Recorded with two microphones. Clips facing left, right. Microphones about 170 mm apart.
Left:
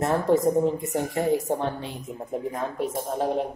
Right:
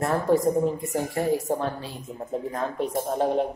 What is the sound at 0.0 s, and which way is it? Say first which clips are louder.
Speech: left 1 dB; 20° left (ahead or behind).